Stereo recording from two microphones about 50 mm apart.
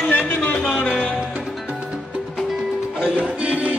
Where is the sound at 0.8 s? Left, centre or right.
Centre.